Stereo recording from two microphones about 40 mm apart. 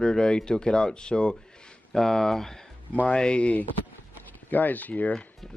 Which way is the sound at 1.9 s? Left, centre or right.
Centre.